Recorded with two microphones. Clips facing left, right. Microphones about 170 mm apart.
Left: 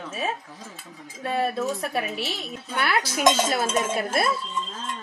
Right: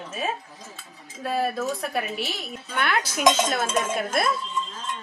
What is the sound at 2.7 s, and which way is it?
Dishes, 10° left (ahead or behind).